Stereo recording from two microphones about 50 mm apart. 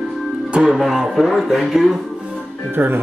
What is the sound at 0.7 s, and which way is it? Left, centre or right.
Speech, centre.